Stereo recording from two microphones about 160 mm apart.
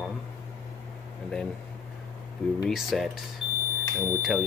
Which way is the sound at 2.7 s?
Centre (ahead or behind).